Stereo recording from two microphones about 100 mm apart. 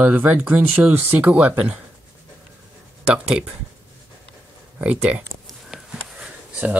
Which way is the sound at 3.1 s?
5° right (ahead or behind).